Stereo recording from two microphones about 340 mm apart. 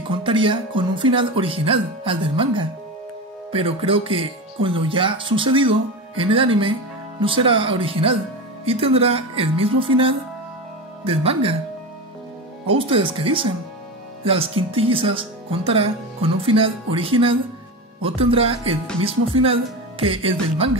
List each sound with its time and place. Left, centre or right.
0.1 s speech: centre
12.6 s speech: centre